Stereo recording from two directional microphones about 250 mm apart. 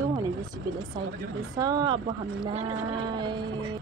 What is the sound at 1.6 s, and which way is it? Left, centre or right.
Speech, centre.